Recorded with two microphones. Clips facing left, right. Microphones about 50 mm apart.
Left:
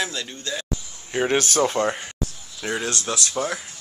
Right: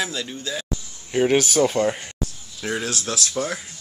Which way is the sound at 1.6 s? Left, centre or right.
Centre.